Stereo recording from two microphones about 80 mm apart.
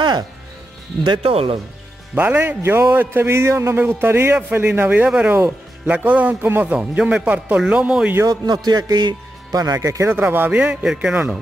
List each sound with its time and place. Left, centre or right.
1.0 s speech: right
2.1 s a man's voice: right
8.3 s a man's voice: right
10.1 s speech: right; by 11.1 s centre